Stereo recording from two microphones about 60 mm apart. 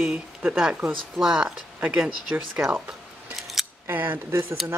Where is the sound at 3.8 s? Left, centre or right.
Right.